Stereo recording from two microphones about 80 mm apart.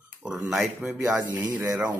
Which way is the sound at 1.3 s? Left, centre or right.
Right.